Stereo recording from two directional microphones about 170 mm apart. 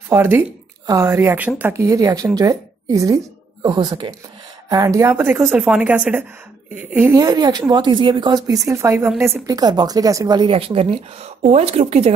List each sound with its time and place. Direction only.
0.1 s a woman's voice: 15° right (ahead or behind); by 12.1 s 40° right (ahead or behind)